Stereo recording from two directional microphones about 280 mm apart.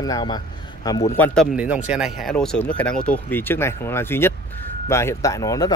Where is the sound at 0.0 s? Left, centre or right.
Centre.